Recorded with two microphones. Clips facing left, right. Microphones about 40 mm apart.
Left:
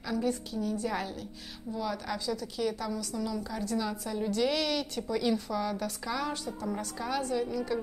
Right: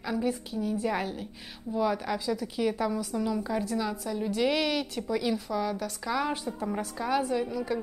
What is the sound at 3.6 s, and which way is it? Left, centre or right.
A woman's voice, centre.